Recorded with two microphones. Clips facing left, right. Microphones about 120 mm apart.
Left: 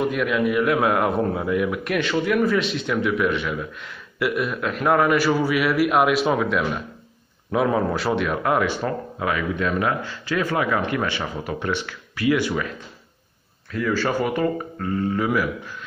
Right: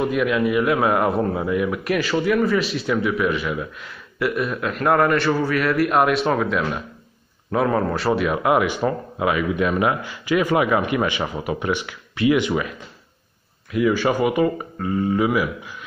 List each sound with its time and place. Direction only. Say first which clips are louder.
0.0 s speech: right 2 dB; centre (ahead or behind); by 12.7 s 15° right (ahead or behind)
13.7 s speech: right 4 dB; 15° right (ahead or behind)